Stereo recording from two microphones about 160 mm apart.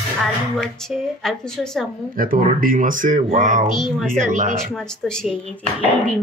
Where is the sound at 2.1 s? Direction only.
60° right (ahead or behind).